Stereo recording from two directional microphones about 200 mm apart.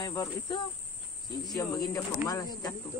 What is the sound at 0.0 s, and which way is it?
Speech, 20° left (ahead or behind).